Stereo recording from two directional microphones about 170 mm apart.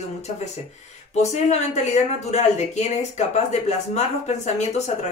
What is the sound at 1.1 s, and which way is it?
Speech, 40° left (ahead or behind).